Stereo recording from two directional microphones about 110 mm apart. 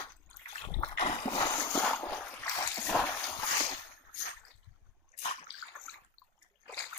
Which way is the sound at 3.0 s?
20° left (ahead or behind).